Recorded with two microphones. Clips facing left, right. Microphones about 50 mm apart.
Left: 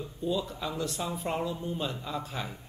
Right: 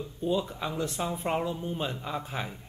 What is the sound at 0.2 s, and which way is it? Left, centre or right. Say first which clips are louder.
Speech: right 2 dB; right.